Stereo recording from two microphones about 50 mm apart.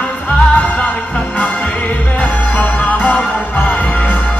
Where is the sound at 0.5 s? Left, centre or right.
Left.